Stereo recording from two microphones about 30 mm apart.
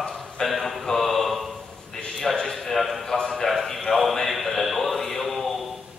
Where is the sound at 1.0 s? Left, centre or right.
Centre.